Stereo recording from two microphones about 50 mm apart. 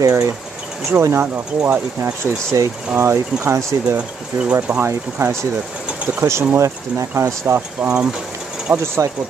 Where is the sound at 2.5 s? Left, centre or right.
Right.